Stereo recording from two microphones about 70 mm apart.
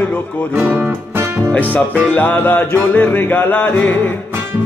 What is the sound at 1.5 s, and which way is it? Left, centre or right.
Music, left.